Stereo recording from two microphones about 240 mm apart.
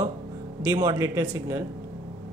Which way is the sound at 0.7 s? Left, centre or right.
Centre.